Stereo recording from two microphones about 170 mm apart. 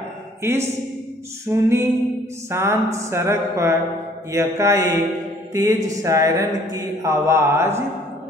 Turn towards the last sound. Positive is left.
turn(degrees=-15)  # may be behind; listen again after turning